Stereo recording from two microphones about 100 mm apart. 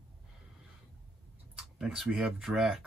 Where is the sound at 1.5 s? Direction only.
5° right (ahead or behind).